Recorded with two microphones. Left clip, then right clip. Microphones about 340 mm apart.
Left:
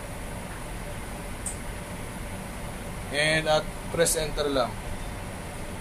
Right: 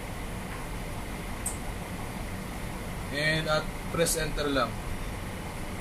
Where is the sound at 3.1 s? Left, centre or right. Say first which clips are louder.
Left 4 dB; left.